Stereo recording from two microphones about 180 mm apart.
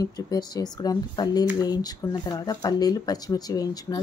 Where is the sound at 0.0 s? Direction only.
20° left (ahead or behind).